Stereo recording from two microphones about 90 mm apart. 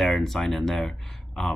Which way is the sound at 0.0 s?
5° left (ahead or behind).